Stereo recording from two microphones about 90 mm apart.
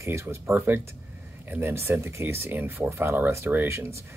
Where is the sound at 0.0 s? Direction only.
30° right (ahead or behind).